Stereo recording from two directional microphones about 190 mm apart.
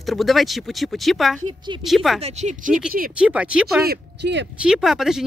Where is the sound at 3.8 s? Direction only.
65° right (ahead or behind).